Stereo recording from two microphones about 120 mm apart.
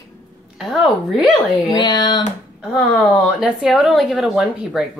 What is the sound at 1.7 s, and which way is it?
Speech, 35° left (ahead or behind).